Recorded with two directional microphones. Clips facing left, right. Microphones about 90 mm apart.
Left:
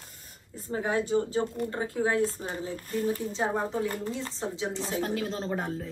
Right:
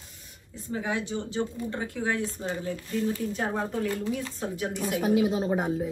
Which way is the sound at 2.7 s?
40° left (ahead or behind).